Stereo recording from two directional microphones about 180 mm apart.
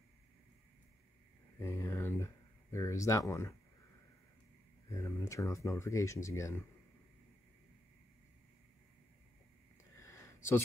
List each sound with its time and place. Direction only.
1.6 s speech: 15° left (ahead or behind)
4.8 s speech: 15° left (ahead or behind)
9.9 s a sound: 15° left (ahead or behind)